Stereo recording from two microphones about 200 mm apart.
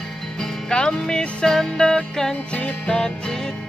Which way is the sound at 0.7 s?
5° left (ahead or behind).